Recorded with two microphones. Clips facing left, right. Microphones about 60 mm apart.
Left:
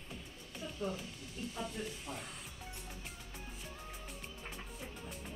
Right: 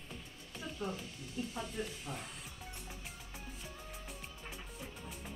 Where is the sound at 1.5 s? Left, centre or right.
Centre.